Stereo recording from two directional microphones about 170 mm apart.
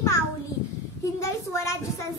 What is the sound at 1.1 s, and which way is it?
Speech, 15° left (ahead or behind).